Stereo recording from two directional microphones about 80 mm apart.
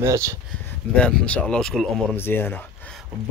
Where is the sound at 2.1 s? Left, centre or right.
Left.